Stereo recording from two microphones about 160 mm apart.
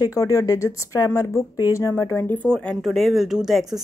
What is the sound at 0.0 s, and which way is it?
Speech, 20° left (ahead or behind).